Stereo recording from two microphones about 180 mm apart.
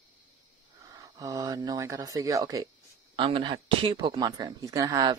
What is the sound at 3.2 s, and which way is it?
Speech, 30° right (ahead or behind).